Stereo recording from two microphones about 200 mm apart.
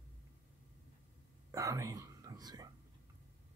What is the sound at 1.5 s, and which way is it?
Whispering, 15° right (ahead or behind).